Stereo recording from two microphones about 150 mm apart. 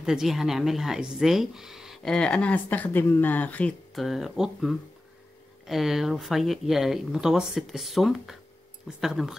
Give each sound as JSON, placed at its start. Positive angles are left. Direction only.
{"t": 0.0, "sound": "speech", "side_deg": -5}